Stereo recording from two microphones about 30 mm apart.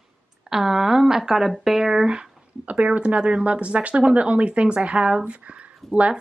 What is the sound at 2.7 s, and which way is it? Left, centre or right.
Speech, right.